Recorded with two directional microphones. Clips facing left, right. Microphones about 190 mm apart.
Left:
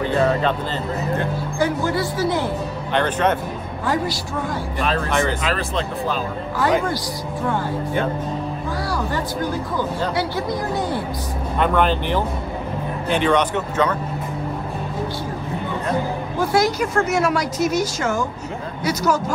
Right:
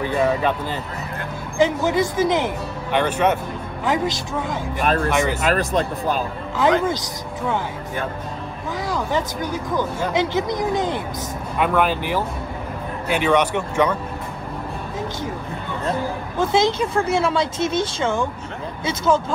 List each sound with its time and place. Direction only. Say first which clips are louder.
0.0 s speech: left 1 dB; 10° right (ahead or behind)
1.6 s speech: right 3 dB; 20° right (ahead or behind)
4.7 s speech: right 2 dB; 50° right (ahead or behind)
8.9 s speech: right 3 dB; 20° right (ahead or behind)
11.5 s speech: left 1 dB; 10° right (ahead or behind)
16.3 s speech: even; 25° right (ahead or behind)